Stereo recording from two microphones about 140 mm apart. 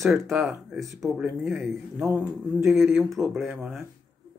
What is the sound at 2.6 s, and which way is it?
Speech, centre (ahead or behind).